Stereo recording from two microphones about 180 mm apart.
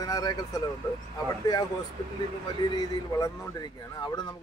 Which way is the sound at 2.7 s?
20° left (ahead or behind).